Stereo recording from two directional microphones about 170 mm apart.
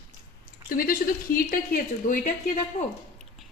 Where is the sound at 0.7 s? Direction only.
55° left (ahead or behind).